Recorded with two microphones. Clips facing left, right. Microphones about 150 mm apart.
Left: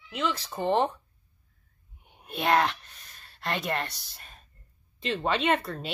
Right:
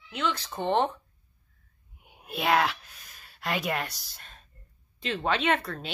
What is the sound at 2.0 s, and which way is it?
A woman's voice, 5° right (ahead or behind).